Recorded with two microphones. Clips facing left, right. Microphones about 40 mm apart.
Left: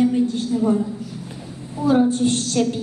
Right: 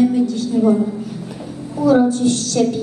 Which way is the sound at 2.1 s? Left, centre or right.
Left.